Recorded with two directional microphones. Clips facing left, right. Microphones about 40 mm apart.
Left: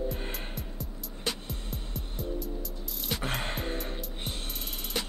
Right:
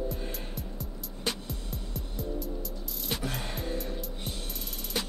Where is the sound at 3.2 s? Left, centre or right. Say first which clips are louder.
Left 2 dB; left.